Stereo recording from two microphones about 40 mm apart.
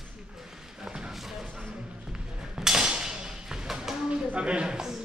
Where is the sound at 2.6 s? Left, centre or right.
Centre.